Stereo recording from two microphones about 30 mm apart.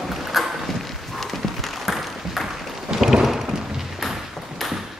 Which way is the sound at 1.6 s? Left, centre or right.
Centre.